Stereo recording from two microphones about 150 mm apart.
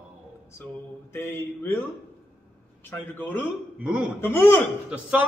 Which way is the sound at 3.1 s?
15° left (ahead or behind).